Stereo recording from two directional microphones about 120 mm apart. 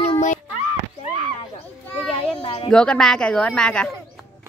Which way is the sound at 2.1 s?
55° left (ahead or behind).